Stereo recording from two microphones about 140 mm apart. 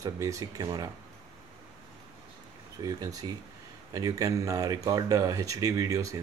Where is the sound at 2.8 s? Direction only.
25° right (ahead or behind).